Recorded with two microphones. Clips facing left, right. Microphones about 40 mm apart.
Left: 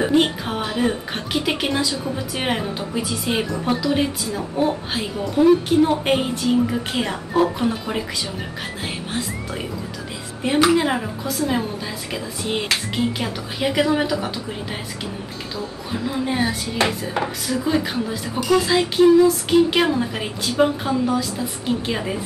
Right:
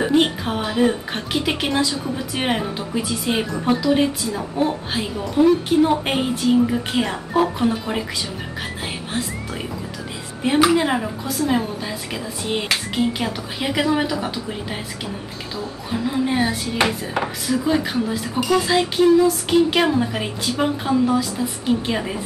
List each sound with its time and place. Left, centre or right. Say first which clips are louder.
0.0 s speech: even; centre
10.4 s speech: right 1 dB; centre